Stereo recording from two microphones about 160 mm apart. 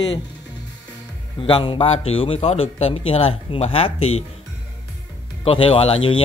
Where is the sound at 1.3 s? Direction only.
35° left (ahead or behind).